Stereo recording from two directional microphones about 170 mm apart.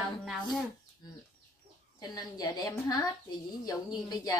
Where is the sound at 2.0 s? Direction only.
25° left (ahead or behind).